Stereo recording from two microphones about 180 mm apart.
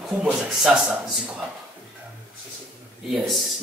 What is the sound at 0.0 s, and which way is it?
Speech, 5° right (ahead or behind).